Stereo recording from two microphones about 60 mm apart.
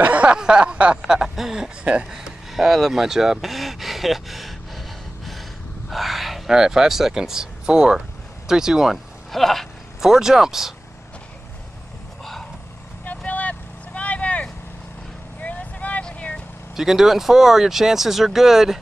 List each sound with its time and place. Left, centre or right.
0.0 s a sound: right
1.0 s speech: centre
2.0 s a sound: centre
5.9 s speech: centre
9.9 s speech: centre
13.0 s vehicle: left
16.7 s speech: centre